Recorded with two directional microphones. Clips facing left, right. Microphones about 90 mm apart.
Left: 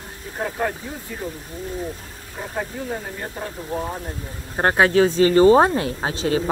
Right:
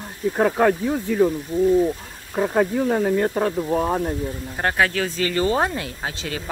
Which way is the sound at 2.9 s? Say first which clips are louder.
Right 10 dB; 50° right (ahead or behind).